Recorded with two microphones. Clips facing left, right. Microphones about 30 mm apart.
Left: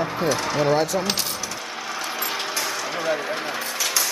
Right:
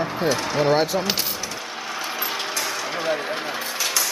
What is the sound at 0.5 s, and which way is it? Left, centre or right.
Speech, right.